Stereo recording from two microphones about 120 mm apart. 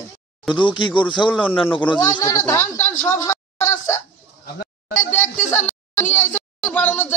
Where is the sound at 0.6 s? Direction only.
45° left (ahead or behind).